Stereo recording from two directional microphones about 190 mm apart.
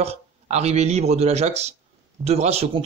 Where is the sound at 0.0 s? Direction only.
35° right (ahead or behind).